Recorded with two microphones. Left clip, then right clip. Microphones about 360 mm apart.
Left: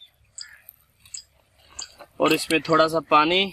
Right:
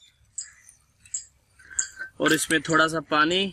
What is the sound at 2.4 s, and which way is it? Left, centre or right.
Speech, left.